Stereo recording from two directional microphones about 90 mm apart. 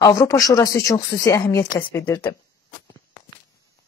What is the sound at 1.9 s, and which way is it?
Speech, 25° left (ahead or behind).